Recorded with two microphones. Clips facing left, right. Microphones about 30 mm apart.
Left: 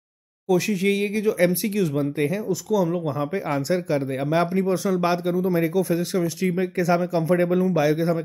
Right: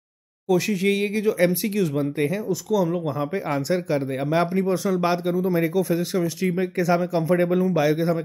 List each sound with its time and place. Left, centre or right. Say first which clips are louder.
0.5 s speech: even; centre